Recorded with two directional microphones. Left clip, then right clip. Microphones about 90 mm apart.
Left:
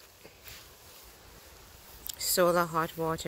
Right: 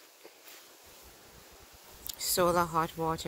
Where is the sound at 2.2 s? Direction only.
Centre (ahead or behind); by 3.3 s 15° left (ahead or behind).